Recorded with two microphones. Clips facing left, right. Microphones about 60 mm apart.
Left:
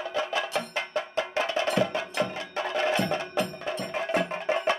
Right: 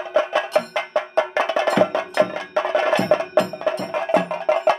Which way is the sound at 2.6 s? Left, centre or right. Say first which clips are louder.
Right 7 dB; right.